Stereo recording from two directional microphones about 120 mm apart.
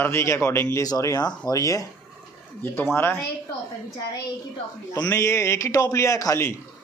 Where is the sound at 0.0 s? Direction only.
20° left (ahead or behind).